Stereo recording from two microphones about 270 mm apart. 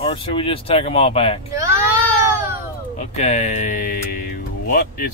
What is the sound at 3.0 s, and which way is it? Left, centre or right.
Music, left.